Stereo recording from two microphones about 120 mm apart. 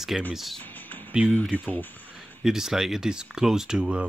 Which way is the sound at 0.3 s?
Centre (ahead or behind).